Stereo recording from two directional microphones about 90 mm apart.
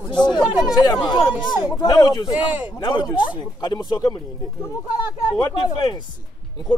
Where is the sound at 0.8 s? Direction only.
50° left (ahead or behind).